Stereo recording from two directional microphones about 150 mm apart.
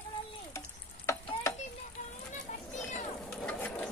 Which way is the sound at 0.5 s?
20° left (ahead or behind).